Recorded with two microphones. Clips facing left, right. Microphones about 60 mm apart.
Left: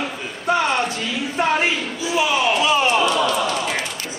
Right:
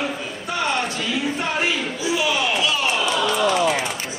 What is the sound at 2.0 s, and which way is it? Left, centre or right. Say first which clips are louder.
Slam: left 3 dB; left.